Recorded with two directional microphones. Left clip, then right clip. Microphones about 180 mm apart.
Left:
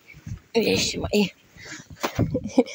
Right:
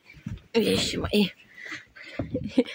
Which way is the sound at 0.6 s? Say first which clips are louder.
Left 2 dB; 5° left (ahead or behind).